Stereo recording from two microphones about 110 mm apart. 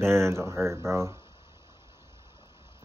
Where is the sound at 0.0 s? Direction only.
25° right (ahead or behind).